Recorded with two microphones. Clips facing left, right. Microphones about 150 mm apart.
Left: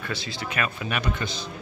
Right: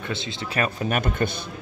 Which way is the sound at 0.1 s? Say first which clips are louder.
Right 2 dB; 25° right (ahead or behind).